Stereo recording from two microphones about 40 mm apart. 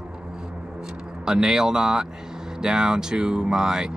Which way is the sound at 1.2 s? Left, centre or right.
Centre.